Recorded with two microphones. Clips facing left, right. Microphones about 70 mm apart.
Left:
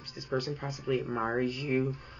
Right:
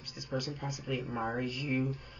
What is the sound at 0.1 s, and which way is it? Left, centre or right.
Speech, left.